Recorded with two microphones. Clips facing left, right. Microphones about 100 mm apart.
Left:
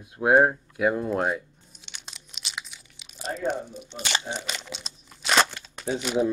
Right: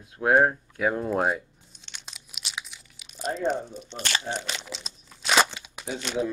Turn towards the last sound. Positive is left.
turn(degrees=10)  # may be behind; listen again after turning